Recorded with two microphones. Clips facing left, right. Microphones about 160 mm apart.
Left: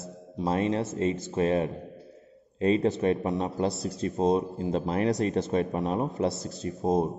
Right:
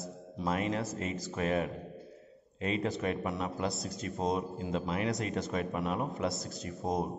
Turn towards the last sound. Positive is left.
turn(degrees=30)  # may be behind; listen again after turning